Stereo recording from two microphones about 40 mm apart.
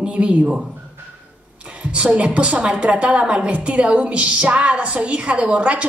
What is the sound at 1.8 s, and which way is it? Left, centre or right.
A woman's voice, right.